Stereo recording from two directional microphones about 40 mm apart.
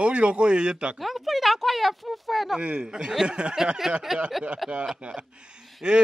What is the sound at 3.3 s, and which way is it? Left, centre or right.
Speech, right.